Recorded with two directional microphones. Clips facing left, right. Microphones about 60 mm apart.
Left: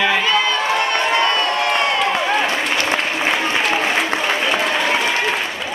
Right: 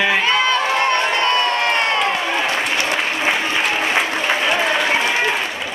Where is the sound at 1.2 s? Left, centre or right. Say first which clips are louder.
Even; right.